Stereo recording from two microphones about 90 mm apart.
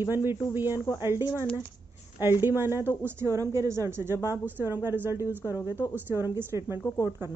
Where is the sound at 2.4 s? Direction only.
25° right (ahead or behind).